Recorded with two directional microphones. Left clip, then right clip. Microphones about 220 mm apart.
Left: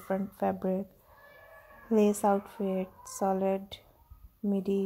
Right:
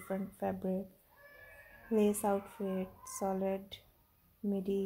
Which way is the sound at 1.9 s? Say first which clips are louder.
Left 6 dB; 30° left (ahead or behind).